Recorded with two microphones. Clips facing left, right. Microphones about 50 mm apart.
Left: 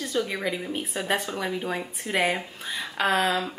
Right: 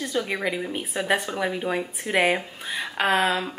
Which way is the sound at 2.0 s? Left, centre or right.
Right.